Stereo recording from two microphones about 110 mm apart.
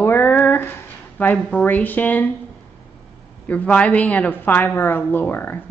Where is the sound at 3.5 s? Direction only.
15° left (ahead or behind).